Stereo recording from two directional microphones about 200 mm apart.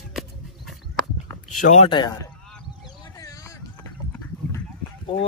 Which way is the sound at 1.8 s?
20° left (ahead or behind).